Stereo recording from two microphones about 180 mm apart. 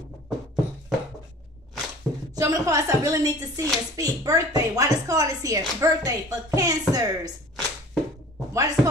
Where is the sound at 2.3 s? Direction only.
20° right (ahead or behind).